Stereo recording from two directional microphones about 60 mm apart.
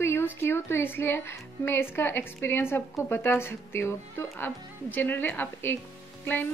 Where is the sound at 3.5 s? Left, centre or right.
Left.